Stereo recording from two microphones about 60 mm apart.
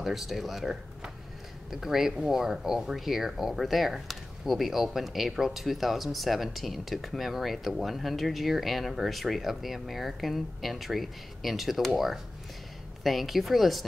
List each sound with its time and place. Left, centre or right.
0.0 s speech: centre
13.0 s speech: centre